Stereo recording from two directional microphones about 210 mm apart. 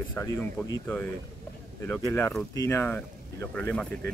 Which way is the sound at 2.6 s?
15° left (ahead or behind).